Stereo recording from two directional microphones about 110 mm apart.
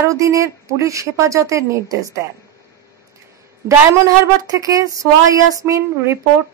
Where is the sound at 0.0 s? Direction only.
30° right (ahead or behind).